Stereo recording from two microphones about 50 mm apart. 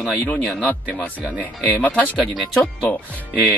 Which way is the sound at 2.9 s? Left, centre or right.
Left.